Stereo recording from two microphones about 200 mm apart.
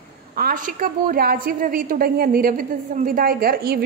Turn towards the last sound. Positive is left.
turn(degrees=-50)  # may be behind; listen again after turning